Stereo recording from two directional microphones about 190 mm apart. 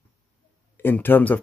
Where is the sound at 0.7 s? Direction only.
10° left (ahead or behind).